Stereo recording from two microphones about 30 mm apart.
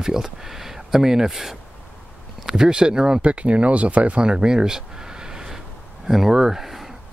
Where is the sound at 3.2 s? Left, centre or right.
Right.